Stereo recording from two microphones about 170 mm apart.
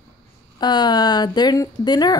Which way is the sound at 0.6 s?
25° left (ahead or behind).